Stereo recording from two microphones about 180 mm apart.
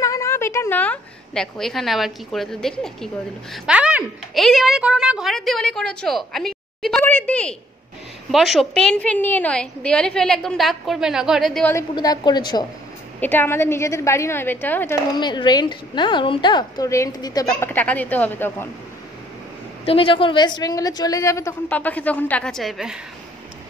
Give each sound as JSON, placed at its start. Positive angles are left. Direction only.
{"t": 0.0, "sound": "a woman's voice", "side_deg": 15}
{"t": 11.7, "sound": "a woman's voice", "side_deg": 20}
{"t": 13.2, "sound": "a woman's voice", "side_deg": 10}
{"t": 15.1, "sound": "a woman's voice", "side_deg": 25}
{"t": 17.7, "sound": "a woman's voice", "side_deg": 10}
{"t": 19.8, "sound": "a woman's voice", "side_deg": 30}